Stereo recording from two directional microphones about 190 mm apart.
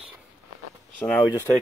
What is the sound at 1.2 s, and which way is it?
Speech, 20° left (ahead or behind).